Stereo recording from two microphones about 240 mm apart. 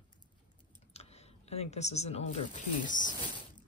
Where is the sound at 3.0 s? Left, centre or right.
Centre.